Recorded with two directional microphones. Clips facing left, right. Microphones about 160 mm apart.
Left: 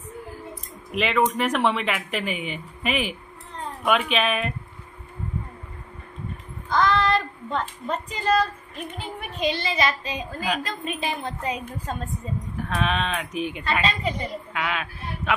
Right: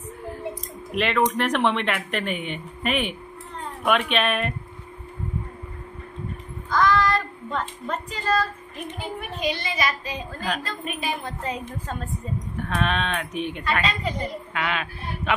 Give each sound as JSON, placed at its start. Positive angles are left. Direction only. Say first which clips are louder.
{"t": 0.9, "sound": "speech", "louder": "even", "side_deg": 0}
{"t": 6.7, "sound": "child singing", "louder": "even", "side_deg": 25}
{"t": 7.8, "sound": "speech", "louder": "left 2 dB", "side_deg": 20}
{"t": 10.4, "sound": "a woman's voice", "louder": "left 1 dB", "side_deg": 10}
{"t": 12.5, "sound": "speech", "louder": "even", "side_deg": 0}